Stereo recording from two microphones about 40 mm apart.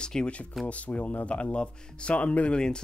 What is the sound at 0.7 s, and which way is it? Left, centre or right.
Speech, left.